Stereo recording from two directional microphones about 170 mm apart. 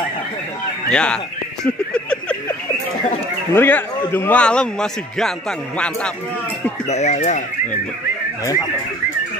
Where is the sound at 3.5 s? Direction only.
10° left (ahead or behind).